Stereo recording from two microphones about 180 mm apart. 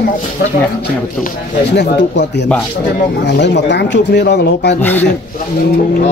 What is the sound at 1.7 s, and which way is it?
Speech, 70° left (ahead or behind).